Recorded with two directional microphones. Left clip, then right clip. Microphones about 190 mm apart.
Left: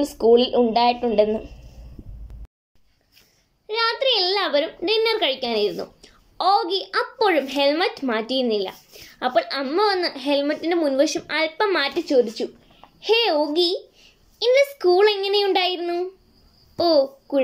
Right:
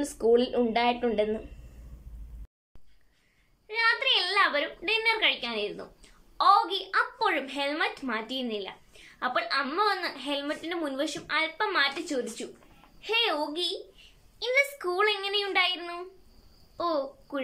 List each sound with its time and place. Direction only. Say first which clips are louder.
0.0 s a woman's voice: left 8 dB; 5° left (ahead or behind)
3.6 s a woman's voice: left 4 dB; 25° left (ahead or behind)